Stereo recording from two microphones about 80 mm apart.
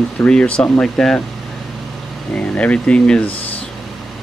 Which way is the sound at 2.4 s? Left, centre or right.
Centre.